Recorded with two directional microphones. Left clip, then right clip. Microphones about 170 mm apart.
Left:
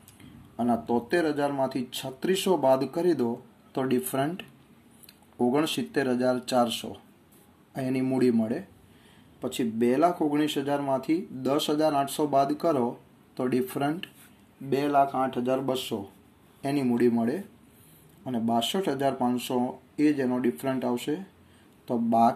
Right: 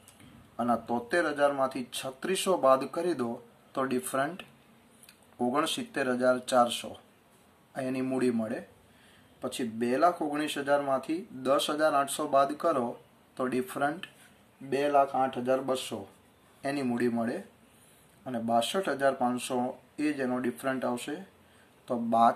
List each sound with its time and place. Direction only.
0.6 s speech: 20° left (ahead or behind)
20.3 s speech: 25° left (ahead or behind)